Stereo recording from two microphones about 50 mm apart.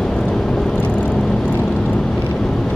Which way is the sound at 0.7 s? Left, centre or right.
Left.